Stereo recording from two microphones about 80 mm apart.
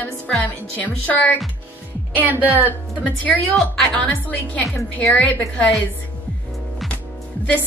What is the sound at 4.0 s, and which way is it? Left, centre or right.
Speech, centre.